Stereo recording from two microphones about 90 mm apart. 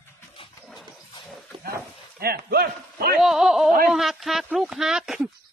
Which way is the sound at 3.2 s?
5° right (ahead or behind).